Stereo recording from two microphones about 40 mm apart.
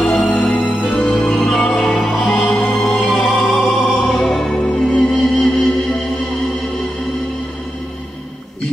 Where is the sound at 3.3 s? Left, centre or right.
Centre.